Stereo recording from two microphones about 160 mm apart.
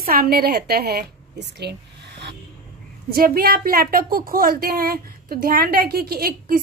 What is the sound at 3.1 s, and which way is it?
A woman's voice, 65° right (ahead or behind).